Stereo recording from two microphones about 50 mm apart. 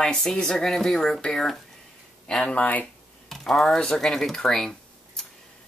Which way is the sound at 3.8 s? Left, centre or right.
Centre.